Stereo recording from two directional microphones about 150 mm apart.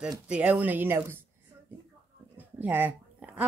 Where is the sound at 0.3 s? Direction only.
10° right (ahead or behind).